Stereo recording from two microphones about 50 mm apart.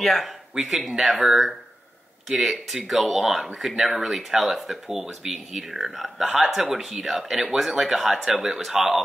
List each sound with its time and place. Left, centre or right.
0.0 s speech: centre